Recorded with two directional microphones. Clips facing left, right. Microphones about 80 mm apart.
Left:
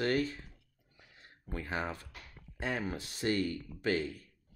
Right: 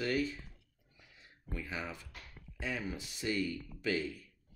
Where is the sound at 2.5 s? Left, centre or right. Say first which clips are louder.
Left 3 dB; left.